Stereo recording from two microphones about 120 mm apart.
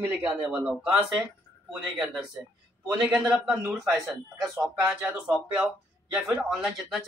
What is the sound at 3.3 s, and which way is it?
A man's voice, 5° right (ahead or behind).